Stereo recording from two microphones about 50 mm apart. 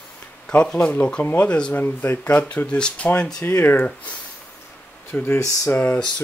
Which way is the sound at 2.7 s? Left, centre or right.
Left.